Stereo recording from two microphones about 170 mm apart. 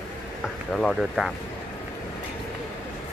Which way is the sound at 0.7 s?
Centre (ahead or behind).